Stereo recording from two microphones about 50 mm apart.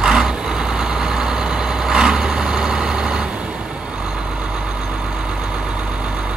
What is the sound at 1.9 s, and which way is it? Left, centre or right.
Vehicle, centre.